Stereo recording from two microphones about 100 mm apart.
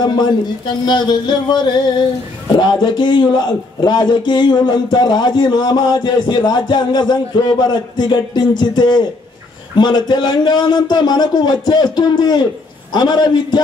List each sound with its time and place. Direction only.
0.0 s a man's voice: 45° left (ahead or behind)